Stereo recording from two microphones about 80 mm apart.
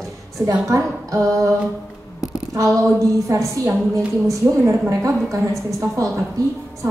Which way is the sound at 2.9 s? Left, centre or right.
Right.